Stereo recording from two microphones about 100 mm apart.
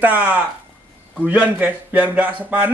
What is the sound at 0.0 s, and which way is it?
Speech, 15° right (ahead or behind).